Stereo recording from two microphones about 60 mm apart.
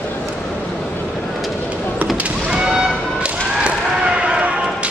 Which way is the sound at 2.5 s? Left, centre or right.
Centre.